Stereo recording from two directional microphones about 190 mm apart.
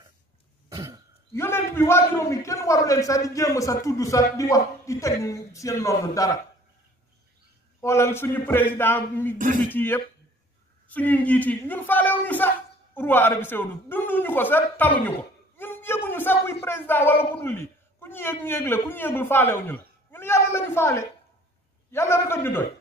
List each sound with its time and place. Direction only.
0.7 s throat clearing: 15° right (ahead or behind)
1.3 s a man's voice: 10° left (ahead or behind)
7.8 s a man's voice: 15° left (ahead or behind)